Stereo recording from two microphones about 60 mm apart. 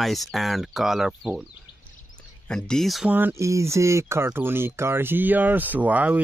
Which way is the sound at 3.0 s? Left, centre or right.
Right.